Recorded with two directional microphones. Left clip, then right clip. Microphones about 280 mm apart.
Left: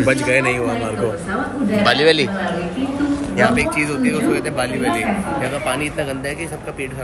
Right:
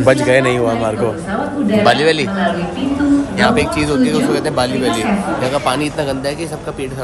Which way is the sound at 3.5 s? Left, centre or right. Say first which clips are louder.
Right 3 dB; centre.